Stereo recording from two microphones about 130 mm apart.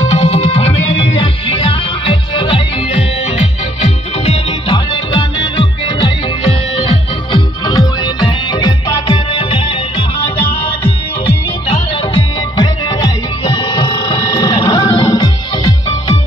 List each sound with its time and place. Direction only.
0.0 s music: 55° left (ahead or behind)
5.9 s music: 40° left (ahead or behind)
9.4 s music: 45° left (ahead or behind)
11.7 s music: 45° left (ahead or behind)